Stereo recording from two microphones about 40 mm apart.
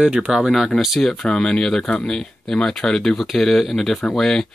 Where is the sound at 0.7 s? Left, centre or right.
Centre.